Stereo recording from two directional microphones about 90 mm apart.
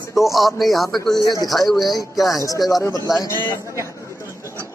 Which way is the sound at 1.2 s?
50° left (ahead or behind).